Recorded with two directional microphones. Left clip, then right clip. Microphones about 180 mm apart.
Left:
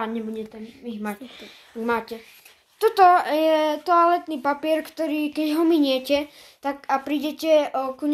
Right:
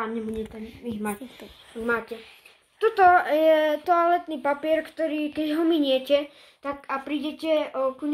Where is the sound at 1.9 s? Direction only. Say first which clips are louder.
Left 2 dB; 40° left (ahead or behind).